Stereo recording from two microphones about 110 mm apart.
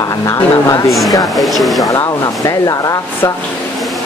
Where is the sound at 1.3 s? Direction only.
Centre (ahead or behind).